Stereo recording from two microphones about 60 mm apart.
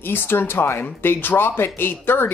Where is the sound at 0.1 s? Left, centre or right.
Left.